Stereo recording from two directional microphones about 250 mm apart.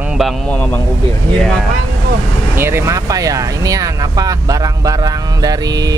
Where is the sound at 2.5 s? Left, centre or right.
Centre.